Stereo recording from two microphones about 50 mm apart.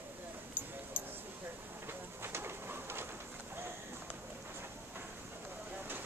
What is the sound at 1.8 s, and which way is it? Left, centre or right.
Bird, right.